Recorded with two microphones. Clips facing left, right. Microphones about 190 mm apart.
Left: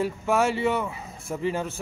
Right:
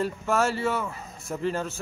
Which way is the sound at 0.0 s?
15° left (ahead or behind).